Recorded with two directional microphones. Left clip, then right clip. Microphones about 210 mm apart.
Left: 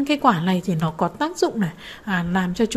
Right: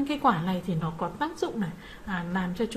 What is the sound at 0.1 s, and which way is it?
A woman's voice, 30° left (ahead or behind).